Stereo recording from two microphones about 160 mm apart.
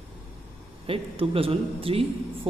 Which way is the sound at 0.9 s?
35° right (ahead or behind).